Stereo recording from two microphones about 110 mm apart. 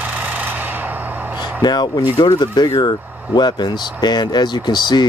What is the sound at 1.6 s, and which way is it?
Speech, 40° left (ahead or behind).